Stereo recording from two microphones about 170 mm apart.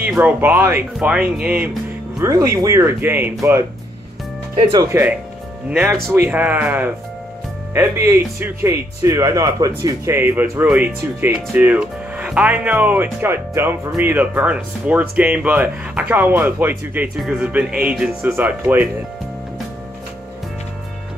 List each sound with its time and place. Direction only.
0.0 s speech: 10° right (ahead or behind)
2.2 s speech: 15° right (ahead or behind)
4.7 s speech: 15° right (ahead or behind)
5.7 s speech: centre (ahead or behind)